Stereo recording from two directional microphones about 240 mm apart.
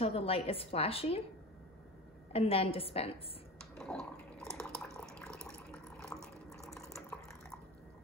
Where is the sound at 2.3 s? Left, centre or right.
Left.